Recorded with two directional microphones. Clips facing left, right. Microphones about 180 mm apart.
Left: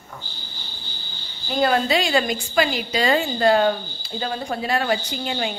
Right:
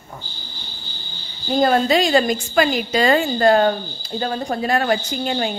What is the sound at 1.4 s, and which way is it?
A woman's voice, 40° right (ahead or behind).